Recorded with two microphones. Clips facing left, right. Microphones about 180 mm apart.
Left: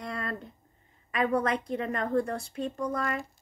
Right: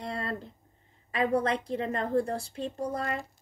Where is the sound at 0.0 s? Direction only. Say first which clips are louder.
Right 1 dB; 30° right (ahead or behind).